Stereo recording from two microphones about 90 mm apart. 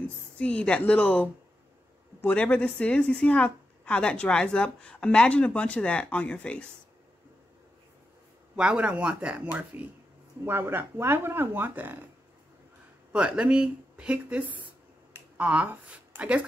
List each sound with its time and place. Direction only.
0.4 s a woman's voice: 15° left (ahead or behind)
8.5 s speech: 10° right (ahead or behind)
13.1 s speech: 10° right (ahead or behind)